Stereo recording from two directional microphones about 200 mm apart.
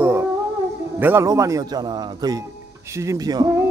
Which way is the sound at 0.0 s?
10° right (ahead or behind).